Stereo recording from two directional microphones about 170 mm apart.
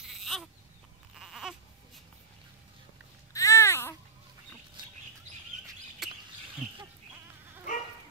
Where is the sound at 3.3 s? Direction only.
20° left (ahead or behind).